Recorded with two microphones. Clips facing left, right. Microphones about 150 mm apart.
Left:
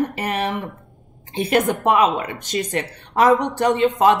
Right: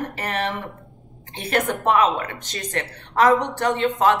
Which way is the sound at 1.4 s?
15° left (ahead or behind).